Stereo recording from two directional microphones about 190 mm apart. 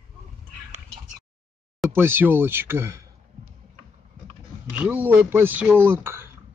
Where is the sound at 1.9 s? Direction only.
10° right (ahead or behind).